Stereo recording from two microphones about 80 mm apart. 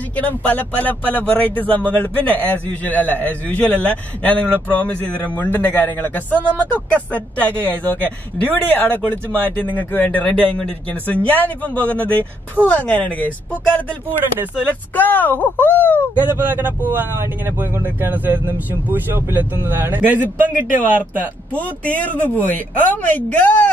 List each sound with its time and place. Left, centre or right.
0.1 s speech: centre
14.7 s speech: left
16.2 s speech: right
21.5 s speech: centre